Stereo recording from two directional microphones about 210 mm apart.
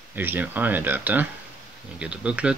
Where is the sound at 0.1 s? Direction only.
10° right (ahead or behind).